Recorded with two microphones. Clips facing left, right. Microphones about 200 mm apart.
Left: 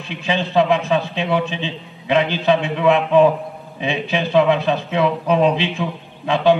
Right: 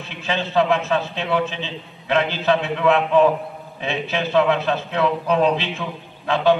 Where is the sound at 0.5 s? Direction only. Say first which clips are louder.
Left 2 dB; 15° left (ahead or behind).